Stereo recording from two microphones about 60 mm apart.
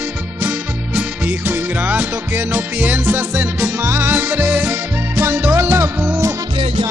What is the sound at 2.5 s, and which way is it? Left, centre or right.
Music, right.